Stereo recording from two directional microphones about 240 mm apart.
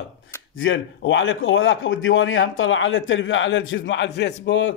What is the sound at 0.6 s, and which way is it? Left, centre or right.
A man's voice, left.